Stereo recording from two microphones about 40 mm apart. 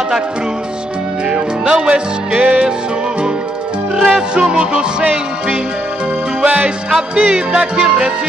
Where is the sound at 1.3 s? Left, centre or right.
Right.